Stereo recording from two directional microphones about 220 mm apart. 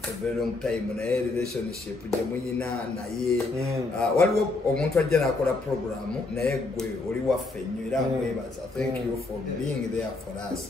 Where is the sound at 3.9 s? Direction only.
5° left (ahead or behind).